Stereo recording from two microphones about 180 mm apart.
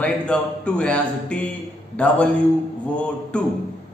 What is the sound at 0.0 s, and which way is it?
A man's voice, 5° left (ahead or behind).